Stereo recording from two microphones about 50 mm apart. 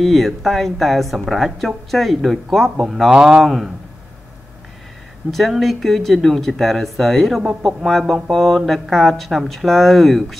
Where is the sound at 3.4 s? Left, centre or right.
Centre.